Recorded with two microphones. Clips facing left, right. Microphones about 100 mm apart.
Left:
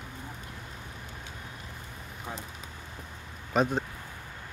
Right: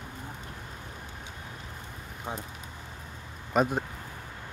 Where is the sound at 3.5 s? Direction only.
5° right (ahead or behind).